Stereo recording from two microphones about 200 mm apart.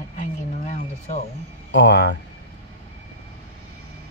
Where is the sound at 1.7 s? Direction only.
60° left (ahead or behind).